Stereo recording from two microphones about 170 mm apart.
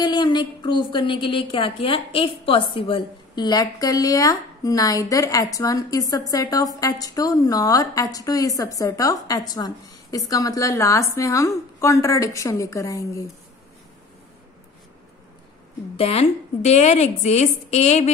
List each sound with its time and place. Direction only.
0.0 s a woman's voice: 25° left (ahead or behind)
16.0 s a woman's voice: 35° left (ahead or behind)